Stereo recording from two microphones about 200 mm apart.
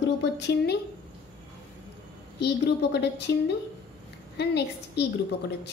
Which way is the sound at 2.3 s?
55° left (ahead or behind).